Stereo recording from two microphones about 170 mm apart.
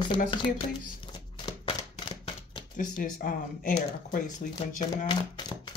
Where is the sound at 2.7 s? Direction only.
50° left (ahead or behind).